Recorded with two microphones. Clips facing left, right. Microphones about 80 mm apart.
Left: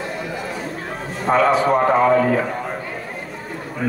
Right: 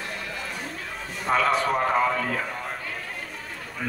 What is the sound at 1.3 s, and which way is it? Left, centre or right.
Speech, centre.